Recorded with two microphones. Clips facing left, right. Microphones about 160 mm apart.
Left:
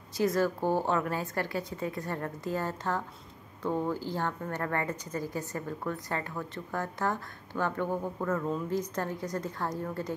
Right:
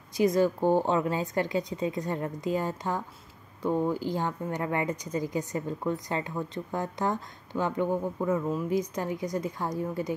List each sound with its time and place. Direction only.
0.2 s a woman's voice: 15° right (ahead or behind)